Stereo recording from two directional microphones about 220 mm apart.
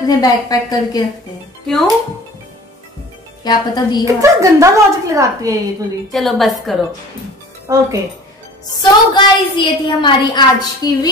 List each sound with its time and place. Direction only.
0.0 s a woman's voice: 15° left (ahead or behind)
1.7 s a woman's voice: centre (ahead or behind)
3.4 s a woman's voice: 20° left (ahead or behind)
4.0 s a woman's voice: 15° right (ahead or behind)
6.1 s a woman's voice: centre (ahead or behind)
7.6 s a woman's voice: 15° right (ahead or behind)
8.8 s a woman's voice: 20° left (ahead or behind)